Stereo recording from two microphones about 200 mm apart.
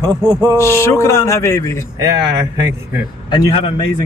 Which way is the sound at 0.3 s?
20° right (ahead or behind).